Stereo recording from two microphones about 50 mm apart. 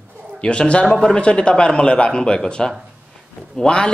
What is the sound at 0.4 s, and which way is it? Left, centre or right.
A man's voice, left.